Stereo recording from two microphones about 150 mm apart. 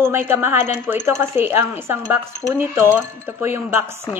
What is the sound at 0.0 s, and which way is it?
A woman's voice, 15° right (ahead or behind).